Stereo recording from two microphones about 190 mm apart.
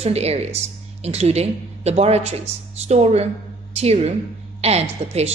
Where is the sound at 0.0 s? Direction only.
35° right (ahead or behind).